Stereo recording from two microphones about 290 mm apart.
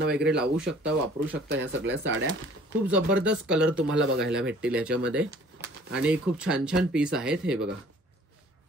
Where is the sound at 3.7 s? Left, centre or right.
Right.